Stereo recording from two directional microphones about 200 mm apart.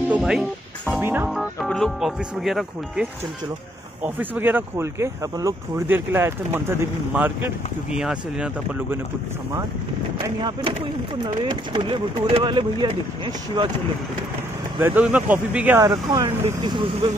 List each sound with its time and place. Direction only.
0.1 s speech: 5° right (ahead or behind)
1.3 s speech: centre (ahead or behind)
10.2 s speech: 20° right (ahead or behind)
14.8 s speech: 10° right (ahead or behind); by 17.1 s 25° right (ahead or behind)